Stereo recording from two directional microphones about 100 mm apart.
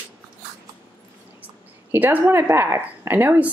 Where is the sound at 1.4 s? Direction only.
15° right (ahead or behind).